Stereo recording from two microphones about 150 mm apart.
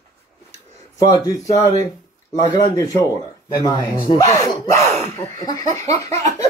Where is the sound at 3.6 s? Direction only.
25° left (ahead or behind).